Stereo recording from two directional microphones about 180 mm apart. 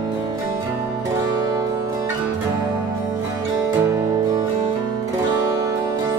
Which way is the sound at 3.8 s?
15° right (ahead or behind).